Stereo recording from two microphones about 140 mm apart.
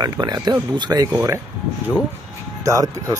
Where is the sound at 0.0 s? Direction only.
30° right (ahead or behind).